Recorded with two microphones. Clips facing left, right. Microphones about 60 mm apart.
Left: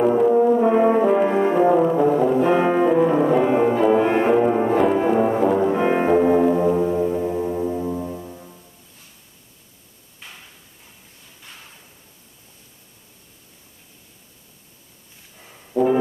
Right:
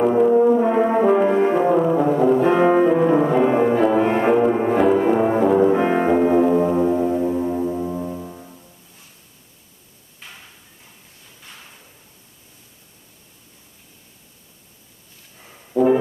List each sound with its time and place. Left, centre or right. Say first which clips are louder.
0.0 s brass instrument: right 1 dB; centre
4.2 s music: even; centre
10.2 s a sound: even; centre
15.4 s brass instrument: right 2 dB; centre